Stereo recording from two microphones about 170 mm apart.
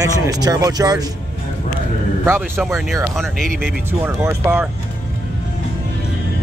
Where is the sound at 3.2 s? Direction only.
5° left (ahead or behind).